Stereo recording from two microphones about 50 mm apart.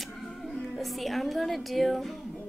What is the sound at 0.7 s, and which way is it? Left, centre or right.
A woman's voice, centre.